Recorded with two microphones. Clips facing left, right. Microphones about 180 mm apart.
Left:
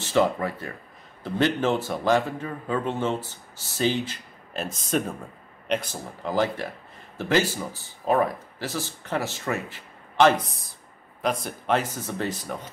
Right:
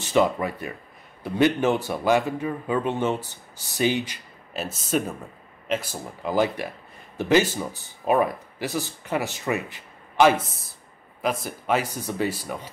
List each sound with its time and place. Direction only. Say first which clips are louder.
0.0 s a man's voice: right 1 dB; 15° right (ahead or behind)
11.4 s a man's voice: even; 5° right (ahead or behind)